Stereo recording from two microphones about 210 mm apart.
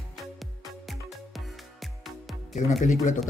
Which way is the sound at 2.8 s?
35° left (ahead or behind).